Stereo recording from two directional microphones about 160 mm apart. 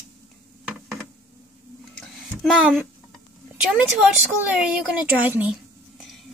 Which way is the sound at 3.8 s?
5° right (ahead or behind).